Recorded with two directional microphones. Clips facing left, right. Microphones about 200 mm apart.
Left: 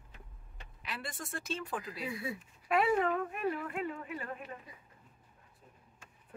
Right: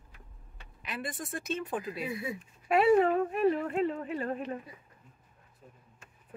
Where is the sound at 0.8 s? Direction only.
20° right (ahead or behind); by 4.4 s 35° right (ahead or behind).